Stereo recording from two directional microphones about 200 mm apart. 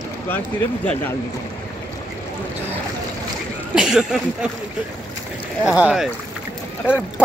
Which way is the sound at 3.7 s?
5° right (ahead or behind).